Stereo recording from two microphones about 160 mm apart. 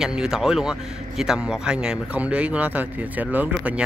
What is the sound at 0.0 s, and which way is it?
A man's voice, 5° right (ahead or behind).